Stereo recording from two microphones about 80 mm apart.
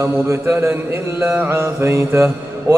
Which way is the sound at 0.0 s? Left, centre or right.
Right.